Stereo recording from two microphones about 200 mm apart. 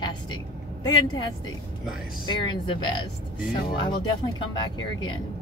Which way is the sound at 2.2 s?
20° left (ahead or behind).